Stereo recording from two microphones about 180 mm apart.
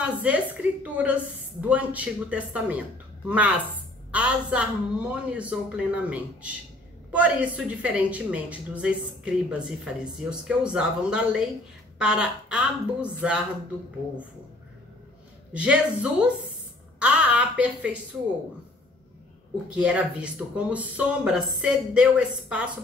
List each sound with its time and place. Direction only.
0.0 s a woman's voice: 10° right (ahead or behind)
15.5 s speech: 5° right (ahead or behind)
19.7 s speech: 5° right (ahead or behind)